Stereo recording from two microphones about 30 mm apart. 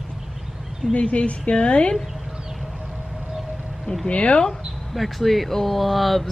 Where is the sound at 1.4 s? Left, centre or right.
Left.